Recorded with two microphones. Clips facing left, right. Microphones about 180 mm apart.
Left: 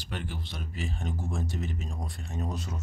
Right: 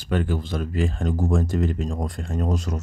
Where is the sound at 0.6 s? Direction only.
90° right.